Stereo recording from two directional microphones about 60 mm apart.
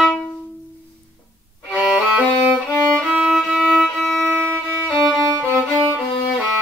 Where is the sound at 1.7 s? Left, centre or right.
Right.